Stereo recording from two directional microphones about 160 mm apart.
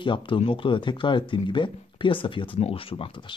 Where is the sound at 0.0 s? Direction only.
30° left (ahead or behind).